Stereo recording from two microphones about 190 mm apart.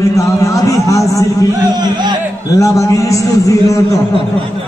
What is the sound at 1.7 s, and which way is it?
Speech, 25° right (ahead or behind).